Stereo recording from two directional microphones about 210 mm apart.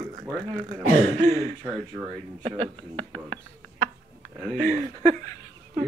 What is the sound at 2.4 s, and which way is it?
Speech, 30° right (ahead or behind).